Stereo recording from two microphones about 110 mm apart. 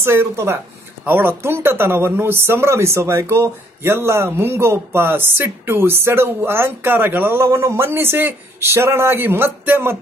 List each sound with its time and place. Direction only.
0.0 s speech: 25° right (ahead or behind)